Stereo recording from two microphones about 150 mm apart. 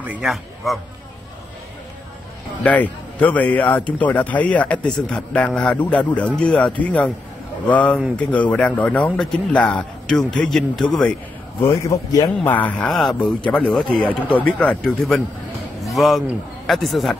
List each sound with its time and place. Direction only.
0.0 s a man's voice: 5° right (ahead or behind)
2.6 s speech: 10° left (ahead or behind)
11.6 s a man's voice: 20° left (ahead or behind)
12.4 s a man's voice: 10° left (ahead or behind)